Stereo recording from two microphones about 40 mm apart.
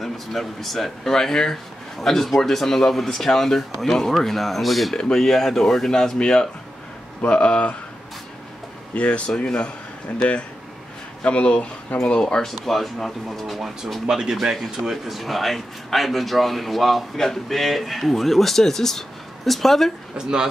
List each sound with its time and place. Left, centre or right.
0.0 s a man's voice: centre
1.1 s a man's voice: centre
4.9 s speech: left
5.2 s speech: centre; by 7.7 s left
8.9 s speech: left
12.4 s a man's voice: centre
14.0 s speech: centre
14.3 s a man's voice: centre
20.2 s speech: centre